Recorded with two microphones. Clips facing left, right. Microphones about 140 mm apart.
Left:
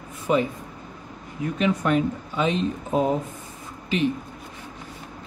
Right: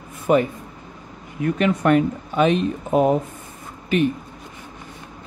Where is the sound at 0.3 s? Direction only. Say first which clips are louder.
Right 4 dB; 55° right (ahead or behind).